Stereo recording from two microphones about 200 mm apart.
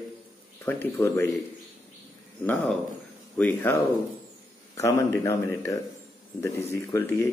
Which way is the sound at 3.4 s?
10° left (ahead or behind).